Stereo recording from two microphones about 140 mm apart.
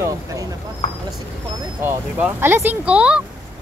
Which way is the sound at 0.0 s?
25° right (ahead or behind).